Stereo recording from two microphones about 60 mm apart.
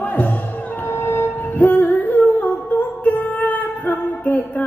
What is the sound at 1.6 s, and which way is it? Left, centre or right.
Music, left.